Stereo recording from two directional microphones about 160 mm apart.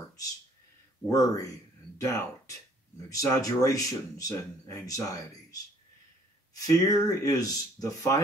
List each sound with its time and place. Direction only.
1.0 s speech: 20° left (ahead or behind)